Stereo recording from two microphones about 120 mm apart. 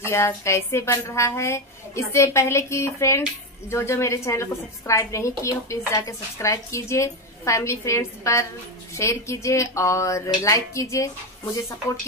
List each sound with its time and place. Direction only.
0.0 s speech: 20° left (ahead or behind)